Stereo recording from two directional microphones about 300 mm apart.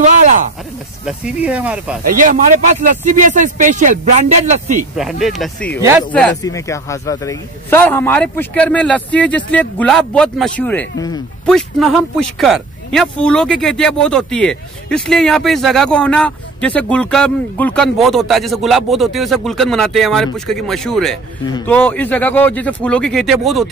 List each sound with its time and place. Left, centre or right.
1.0 s speech: centre
2.1 s speech: right
4.9 s speech: centre
5.8 s speech: centre
6.1 s speech: centre